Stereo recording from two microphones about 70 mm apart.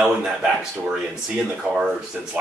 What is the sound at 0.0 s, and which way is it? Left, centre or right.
Speech, centre.